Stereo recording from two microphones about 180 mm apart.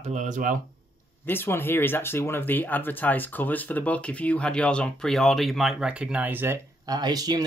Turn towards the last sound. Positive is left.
turn(degrees=-20)  # may be behind; listen again after turning